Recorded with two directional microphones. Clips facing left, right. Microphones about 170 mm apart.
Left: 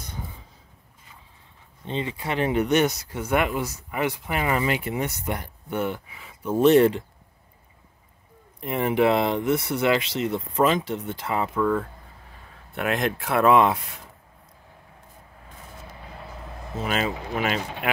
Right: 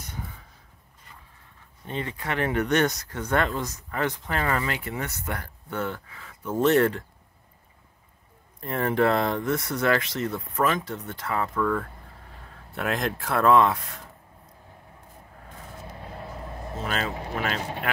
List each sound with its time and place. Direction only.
2.0 s speech: 15° left (ahead or behind)
8.5 s speech: 15° left (ahead or behind)
13.4 s speech: 15° left (ahead or behind)
16.8 s speech: 10° left (ahead or behind)